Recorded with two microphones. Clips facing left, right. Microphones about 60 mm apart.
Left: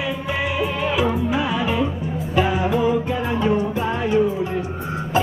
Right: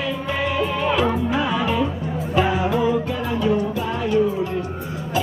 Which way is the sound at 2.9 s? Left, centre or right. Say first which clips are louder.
Left 1 dB; left.